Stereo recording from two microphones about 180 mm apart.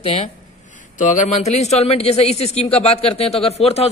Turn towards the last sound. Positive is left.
turn(degrees=35)  # may be behind; listen again after turning